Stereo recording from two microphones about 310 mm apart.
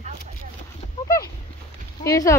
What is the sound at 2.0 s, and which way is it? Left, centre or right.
Speech, centre.